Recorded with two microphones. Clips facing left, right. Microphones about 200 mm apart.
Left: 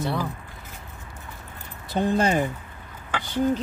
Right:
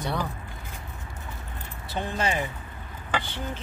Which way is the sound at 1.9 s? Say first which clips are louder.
Left 7 dB; 40° left (ahead or behind).